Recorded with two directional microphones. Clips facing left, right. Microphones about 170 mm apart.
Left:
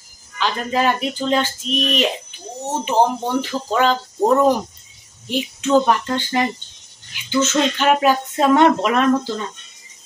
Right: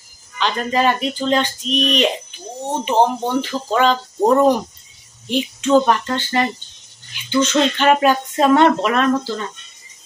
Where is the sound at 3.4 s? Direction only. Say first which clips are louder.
Right 2 dB; 10° left (ahead or behind).